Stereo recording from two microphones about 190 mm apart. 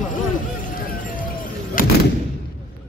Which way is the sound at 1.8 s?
45° left (ahead or behind).